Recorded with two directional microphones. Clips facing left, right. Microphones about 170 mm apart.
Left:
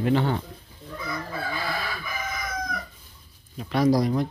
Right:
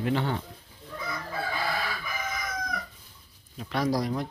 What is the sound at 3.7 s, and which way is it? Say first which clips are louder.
Speech: left 6 dB; 5° left (ahead or behind).